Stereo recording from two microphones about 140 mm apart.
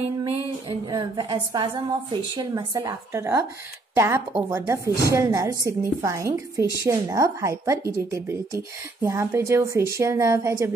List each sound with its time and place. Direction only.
0.2 s a woman's voice: 40° right (ahead or behind); by 10.7 s 20° right (ahead or behind)